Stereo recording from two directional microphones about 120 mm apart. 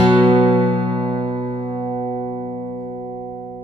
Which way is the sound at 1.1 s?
50° right (ahead or behind).